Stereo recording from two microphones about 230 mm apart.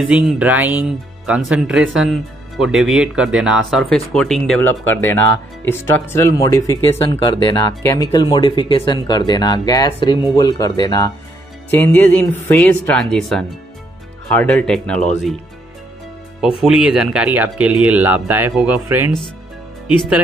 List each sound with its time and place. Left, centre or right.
0.1 s speech: centre
16.3 s speech: centre